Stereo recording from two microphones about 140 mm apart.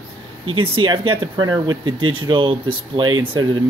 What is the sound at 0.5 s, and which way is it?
Speech, 35° right (ahead or behind).